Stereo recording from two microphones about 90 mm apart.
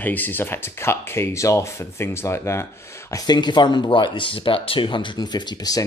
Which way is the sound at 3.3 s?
55° left (ahead or behind).